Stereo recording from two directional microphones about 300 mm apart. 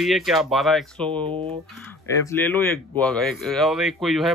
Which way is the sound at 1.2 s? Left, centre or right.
Centre.